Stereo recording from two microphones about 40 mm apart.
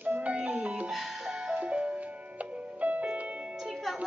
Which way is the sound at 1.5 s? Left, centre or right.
Right.